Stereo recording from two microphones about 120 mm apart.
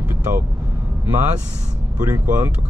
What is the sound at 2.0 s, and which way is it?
Speech, 25° right (ahead or behind).